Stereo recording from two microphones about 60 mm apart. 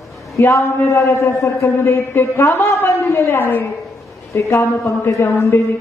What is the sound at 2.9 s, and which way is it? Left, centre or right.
A woman's voice, left.